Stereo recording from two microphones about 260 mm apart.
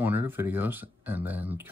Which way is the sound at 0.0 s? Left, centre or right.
Centre.